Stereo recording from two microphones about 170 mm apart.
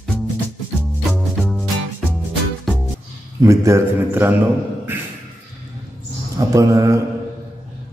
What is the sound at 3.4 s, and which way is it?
Speech, 15° right (ahead or behind).